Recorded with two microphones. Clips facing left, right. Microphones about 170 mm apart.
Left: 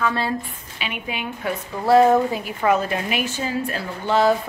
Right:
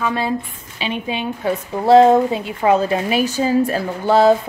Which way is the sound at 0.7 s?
30° right (ahead or behind).